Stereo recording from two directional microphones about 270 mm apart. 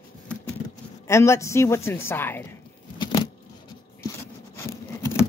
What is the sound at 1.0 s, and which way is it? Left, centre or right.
Speech, centre.